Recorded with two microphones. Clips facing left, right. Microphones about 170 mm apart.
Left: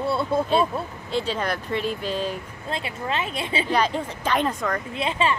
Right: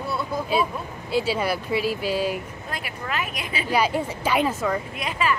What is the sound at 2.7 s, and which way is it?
Speech, 25° left (ahead or behind).